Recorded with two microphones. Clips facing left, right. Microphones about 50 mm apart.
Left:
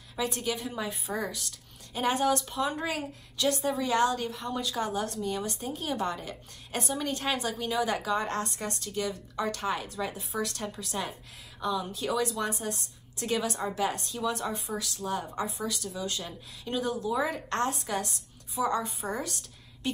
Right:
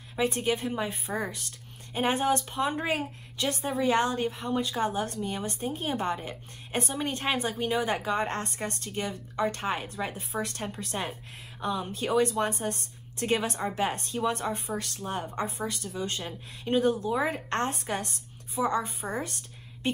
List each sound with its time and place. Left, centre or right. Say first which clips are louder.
0.1 s a woman's voice: right 4 dB; right
18.6 s a woman's voice: right 1 dB; right